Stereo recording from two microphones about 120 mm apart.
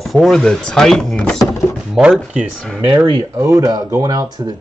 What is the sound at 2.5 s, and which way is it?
Speech, 5° left (ahead or behind).